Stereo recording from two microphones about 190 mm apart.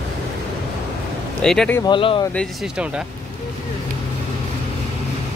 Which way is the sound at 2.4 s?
5° right (ahead or behind).